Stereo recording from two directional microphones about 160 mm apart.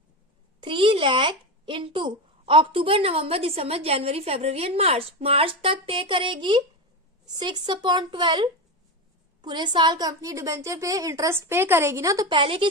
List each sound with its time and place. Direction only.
0.6 s a woman's voice: 30° right (ahead or behind)
12.3 s speech: 30° right (ahead or behind)